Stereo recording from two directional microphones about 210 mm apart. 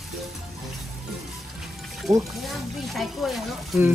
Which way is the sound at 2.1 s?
15° right (ahead or behind).